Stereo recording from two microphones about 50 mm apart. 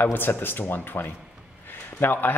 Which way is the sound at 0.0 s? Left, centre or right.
Left.